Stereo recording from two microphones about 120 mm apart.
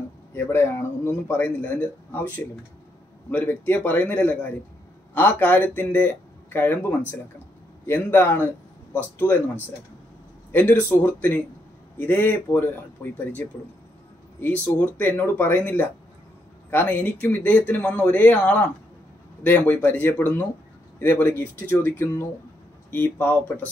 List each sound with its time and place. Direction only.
0.3 s a man's voice: 20° left (ahead or behind)
7.8 s speech: 20° left (ahead or behind)
10.5 s speech: 15° left (ahead or behind)